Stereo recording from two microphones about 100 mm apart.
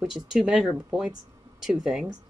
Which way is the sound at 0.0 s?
5° right (ahead or behind).